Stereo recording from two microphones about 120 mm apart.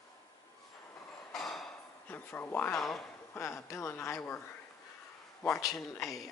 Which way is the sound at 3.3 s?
25° left (ahead or behind).